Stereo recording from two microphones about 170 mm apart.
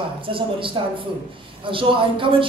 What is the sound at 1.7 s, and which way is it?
Speech, 30° right (ahead or behind).